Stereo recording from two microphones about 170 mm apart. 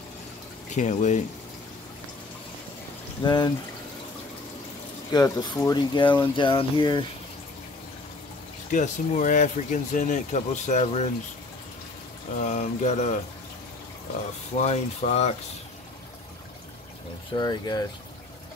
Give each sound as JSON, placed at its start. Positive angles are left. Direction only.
{"t": 0.7, "sound": "speech", "side_deg": 45}
{"t": 3.2, "sound": "speech", "side_deg": 25}
{"t": 5.1, "sound": "speech", "side_deg": 25}
{"t": 8.6, "sound": "speech", "side_deg": 45}
{"t": 12.4, "sound": "speech", "side_deg": 45}
{"t": 14.5, "sound": "speech", "side_deg": 40}
{"t": 17.3, "sound": "speech", "side_deg": 25}